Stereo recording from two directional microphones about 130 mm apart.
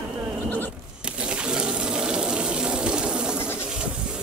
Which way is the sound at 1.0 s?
10° right (ahead or behind).